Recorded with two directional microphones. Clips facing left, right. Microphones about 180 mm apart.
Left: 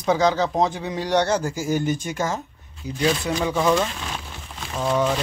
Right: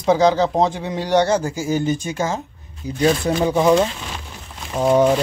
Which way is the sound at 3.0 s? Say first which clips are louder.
Right 5 dB; 40° right (ahead or behind).